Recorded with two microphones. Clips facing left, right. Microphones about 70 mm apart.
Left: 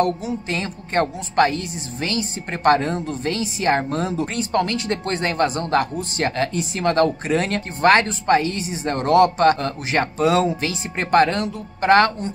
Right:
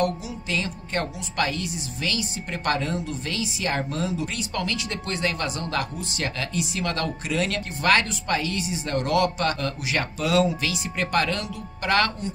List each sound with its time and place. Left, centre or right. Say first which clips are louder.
0.0 s speech: left 5 dB; left